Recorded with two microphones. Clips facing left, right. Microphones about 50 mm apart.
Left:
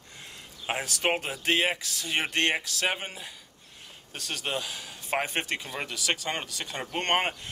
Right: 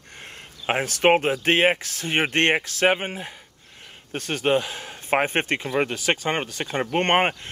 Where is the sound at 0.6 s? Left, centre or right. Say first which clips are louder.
Right 8 dB; right.